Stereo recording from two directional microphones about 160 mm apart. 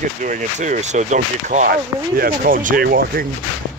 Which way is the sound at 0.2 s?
55° right (ahead or behind).